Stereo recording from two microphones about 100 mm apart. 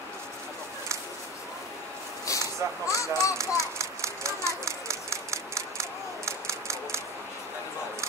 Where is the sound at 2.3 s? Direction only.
30° left (ahead or behind).